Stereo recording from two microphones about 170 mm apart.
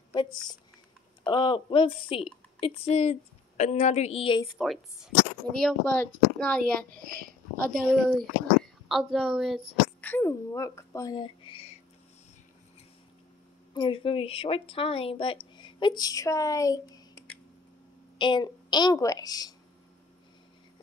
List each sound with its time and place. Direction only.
0.1 s a sound: 25° left (ahead or behind)
1.2 s a woman's voice: 25° left (ahead or behind)
4.6 s a woman's voice: centre (ahead or behind)
7.0 s a woman's voice: 55° right (ahead or behind)
8.0 s a woman's voice: centre (ahead or behind)
10.0 s speech: 15° left (ahead or behind); by 11.8 s 35° left (ahead or behind)
13.7 s speech: 30° left (ahead or behind)
18.1 s a woman's voice: 25° left (ahead or behind)